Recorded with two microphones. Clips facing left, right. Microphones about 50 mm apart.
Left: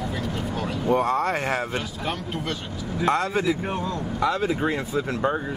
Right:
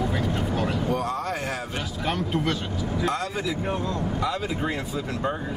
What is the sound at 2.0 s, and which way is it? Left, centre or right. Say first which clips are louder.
Speech: right 3 dB; centre.